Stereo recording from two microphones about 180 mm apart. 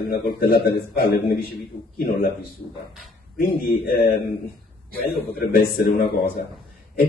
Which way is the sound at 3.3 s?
60° left (ahead or behind).